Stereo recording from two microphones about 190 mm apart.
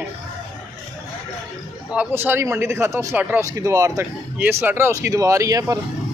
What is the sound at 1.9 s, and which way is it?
Speech, 10° right (ahead or behind).